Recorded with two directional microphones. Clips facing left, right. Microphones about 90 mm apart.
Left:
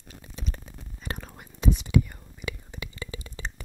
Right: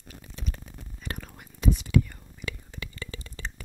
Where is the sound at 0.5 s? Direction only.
20° left (ahead or behind).